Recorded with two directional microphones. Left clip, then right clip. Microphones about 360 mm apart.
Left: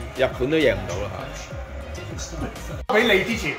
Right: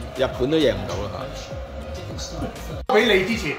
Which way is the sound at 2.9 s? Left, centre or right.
Centre.